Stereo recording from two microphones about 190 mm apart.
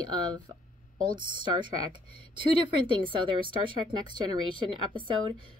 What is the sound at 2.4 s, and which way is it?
Speech, 25° right (ahead or behind).